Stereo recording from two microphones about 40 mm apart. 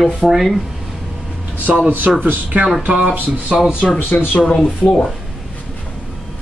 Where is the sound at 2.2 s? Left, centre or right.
Right.